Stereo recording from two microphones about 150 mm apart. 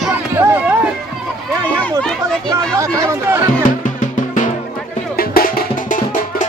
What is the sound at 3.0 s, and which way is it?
Run, 20° right (ahead or behind).